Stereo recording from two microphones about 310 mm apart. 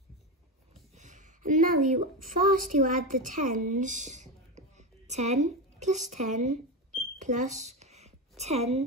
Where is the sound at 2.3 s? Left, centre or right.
Right.